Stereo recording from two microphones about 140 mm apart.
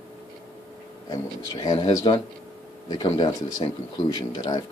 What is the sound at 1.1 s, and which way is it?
Speech, 30° left (ahead or behind).